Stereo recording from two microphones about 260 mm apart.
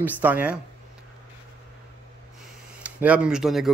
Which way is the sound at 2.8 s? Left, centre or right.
Centre.